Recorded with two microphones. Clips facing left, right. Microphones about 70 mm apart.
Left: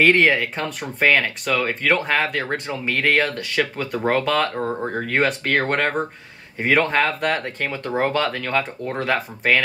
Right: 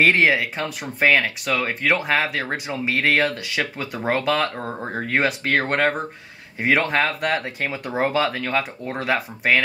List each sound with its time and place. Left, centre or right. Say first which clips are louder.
0.0 s speech: left 1 dB; centre